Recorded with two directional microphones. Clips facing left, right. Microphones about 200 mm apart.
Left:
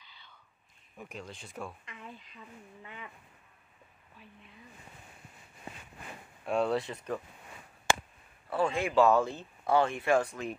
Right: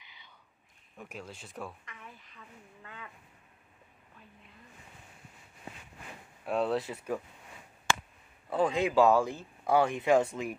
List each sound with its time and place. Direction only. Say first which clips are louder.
0.1 s whispering: even; 15° right (ahead or behind)
0.9 s speech: even; 5° right (ahead or behind)
1.9 s speech: left 4 dB; 20° left (ahead or behind)
6.4 s speech: left 1 dB; centre (ahead or behind)
8.5 s speech: right 2 dB; 20° right (ahead or behind)